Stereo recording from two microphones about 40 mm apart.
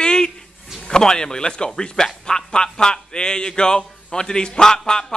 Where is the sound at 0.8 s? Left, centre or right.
Centre.